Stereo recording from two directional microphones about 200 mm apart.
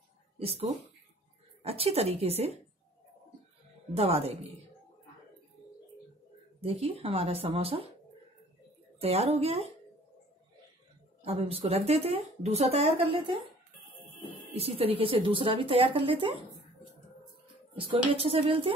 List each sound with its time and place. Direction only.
0.4 s speech: 30° right (ahead or behind)
3.9 s speech: 30° right (ahead or behind)
6.6 s a woman's voice: 30° right (ahead or behind)
9.0 s speech: 30° right (ahead or behind)
11.2 s speech: 30° right (ahead or behind)
14.5 s a woman's voice: 30° right (ahead or behind)
17.7 s a woman's voice: 25° right (ahead or behind)